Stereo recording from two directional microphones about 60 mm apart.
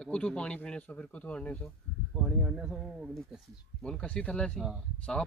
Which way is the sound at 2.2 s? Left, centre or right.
Centre.